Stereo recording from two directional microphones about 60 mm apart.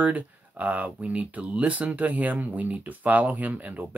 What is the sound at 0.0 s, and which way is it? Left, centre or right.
Speech, right.